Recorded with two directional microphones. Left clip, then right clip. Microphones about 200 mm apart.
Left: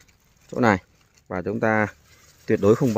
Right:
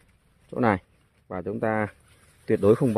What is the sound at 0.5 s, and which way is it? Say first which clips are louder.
Speech: left 4 dB; 15° left (ahead or behind).